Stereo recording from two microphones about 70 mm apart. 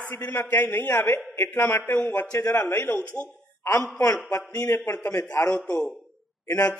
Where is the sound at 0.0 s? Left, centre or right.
Left.